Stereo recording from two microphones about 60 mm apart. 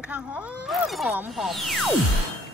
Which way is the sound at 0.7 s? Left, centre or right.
Centre.